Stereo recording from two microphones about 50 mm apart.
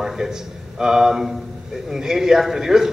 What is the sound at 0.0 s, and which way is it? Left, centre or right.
A man's voice, centre.